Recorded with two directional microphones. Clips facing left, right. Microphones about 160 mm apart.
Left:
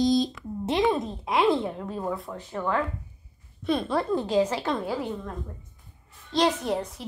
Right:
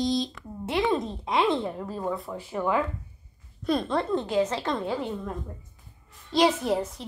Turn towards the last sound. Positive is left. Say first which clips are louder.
# right 2 dB
turn(degrees=0)  # may be behind; listen again after turning